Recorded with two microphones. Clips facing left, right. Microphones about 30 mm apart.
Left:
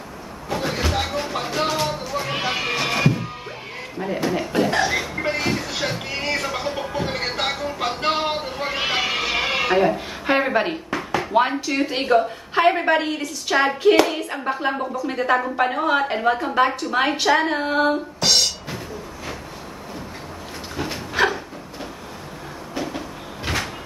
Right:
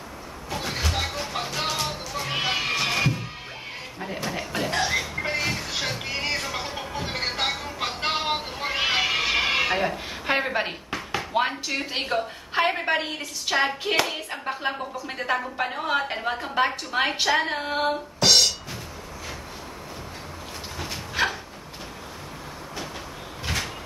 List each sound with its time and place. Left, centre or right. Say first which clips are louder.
0.5 s vehicle: left 5 dB; centre
1.8 s music: left 5 dB; centre
2.2 s cat: even; centre
4.2 s a sound: left 7 dB; centre
6.9 s music: left 4 dB; centre
7.6 s a sound: left 5 dB; centre
11.6 s a woman's voice: left 6 dB; centre
20.8 s a sound: left 5 dB; centre
23.4 s cupboard open or close: left 4 dB; centre